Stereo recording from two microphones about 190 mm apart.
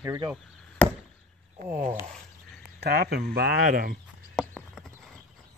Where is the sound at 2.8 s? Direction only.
55° right (ahead or behind).